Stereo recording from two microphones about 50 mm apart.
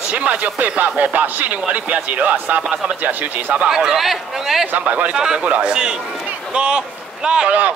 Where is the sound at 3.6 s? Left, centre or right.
Centre.